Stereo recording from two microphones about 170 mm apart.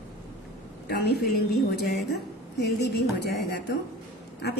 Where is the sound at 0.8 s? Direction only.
70° left (ahead or behind).